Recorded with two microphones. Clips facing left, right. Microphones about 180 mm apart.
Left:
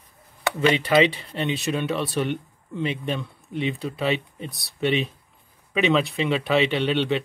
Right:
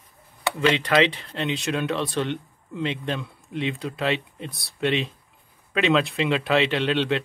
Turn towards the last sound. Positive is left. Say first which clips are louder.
# even
turn(degrees=0)  # may be behind; listen again after turning